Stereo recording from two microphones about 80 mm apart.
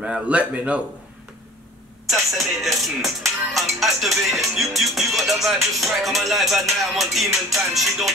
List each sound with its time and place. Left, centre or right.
0.0 s a man's voice: centre
2.0 s music: centre